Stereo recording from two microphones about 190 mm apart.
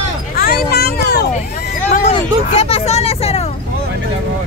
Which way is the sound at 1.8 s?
40° left (ahead or behind).